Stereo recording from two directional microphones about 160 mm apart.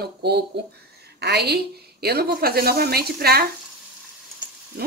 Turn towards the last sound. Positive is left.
turn(degrees=-65)  # may be behind; listen again after turning